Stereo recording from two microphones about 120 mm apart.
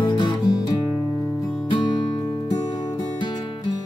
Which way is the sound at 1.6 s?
40° left (ahead or behind).